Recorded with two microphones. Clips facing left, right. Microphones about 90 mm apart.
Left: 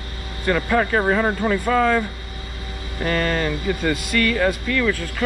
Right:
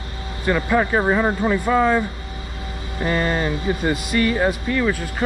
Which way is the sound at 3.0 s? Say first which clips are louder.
Right 1 dB; 20° right (ahead or behind).